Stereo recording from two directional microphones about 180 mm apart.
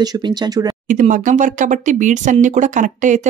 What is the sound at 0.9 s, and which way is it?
Speech, 45° right (ahead or behind).